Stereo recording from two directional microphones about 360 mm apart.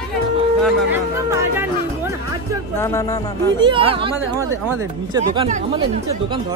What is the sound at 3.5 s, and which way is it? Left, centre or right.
Speech, centre.